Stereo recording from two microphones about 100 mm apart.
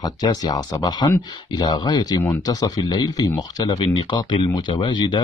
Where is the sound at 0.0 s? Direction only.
40° left (ahead or behind).